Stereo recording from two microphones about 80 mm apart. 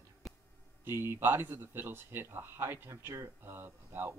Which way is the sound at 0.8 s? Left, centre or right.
Right.